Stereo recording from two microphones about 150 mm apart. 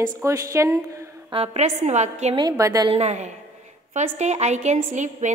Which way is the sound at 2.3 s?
25° right (ahead or behind).